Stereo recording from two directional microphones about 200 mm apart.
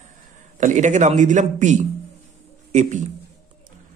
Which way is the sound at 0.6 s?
35° right (ahead or behind).